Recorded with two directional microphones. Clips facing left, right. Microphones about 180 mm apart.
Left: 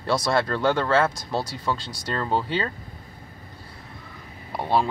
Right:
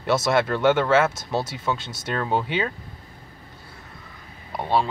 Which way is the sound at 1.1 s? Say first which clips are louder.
Right 1 dB; 25° right (ahead or behind).